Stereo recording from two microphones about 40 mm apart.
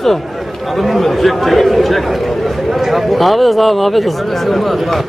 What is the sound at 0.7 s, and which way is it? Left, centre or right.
Speech, centre.